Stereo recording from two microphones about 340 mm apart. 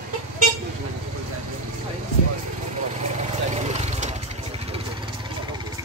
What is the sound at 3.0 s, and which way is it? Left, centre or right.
Vehicle, centre.